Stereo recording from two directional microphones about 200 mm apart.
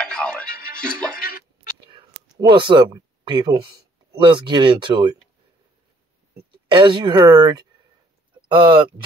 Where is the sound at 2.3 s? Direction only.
25° right (ahead or behind).